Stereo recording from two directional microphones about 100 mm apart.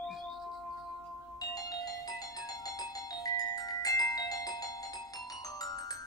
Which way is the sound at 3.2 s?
40° left (ahead or behind).